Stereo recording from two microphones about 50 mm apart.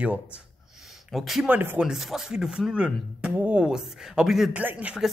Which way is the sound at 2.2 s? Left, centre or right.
Centre.